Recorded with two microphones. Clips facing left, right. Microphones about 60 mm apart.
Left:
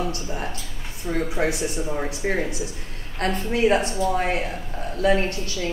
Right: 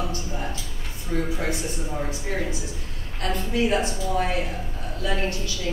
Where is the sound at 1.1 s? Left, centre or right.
Left.